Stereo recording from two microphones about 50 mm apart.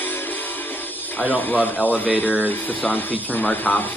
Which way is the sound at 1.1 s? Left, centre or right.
Left.